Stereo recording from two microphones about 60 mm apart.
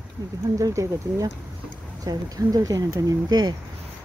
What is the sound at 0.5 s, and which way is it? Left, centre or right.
Speech, right.